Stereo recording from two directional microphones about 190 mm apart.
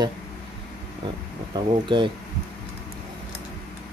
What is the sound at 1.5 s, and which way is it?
Speech, 25° right (ahead or behind).